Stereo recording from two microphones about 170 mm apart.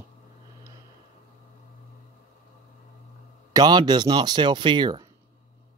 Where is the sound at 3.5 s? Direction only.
25° right (ahead or behind).